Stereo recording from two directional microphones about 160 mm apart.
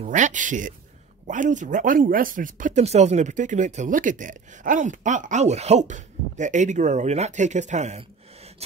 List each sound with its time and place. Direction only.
0.0 s speech: 50° right (ahead or behind)